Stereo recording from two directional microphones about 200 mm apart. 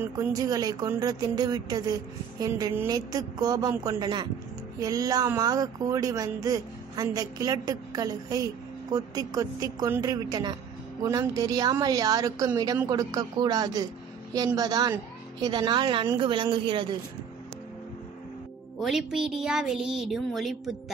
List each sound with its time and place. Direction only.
0.0 s speech: 15° right (ahead or behind)
18.8 s speech: centre (ahead or behind)